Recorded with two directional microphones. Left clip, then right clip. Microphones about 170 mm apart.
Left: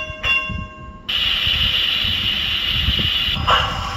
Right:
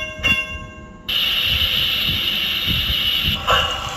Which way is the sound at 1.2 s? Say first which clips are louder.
Even; 45° right (ahead or behind).